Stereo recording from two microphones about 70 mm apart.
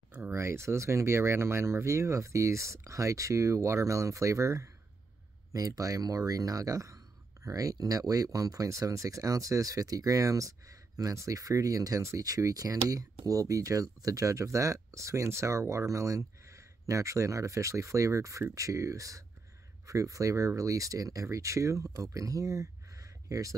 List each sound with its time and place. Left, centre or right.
0.3 s speech: right